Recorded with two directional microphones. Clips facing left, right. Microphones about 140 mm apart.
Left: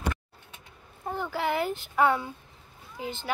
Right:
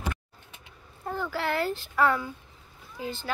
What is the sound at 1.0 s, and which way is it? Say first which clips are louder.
A child's voice: left 1 dB; 20° left (ahead or behind).